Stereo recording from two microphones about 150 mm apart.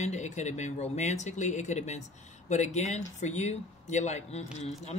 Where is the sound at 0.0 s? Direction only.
50° left (ahead or behind).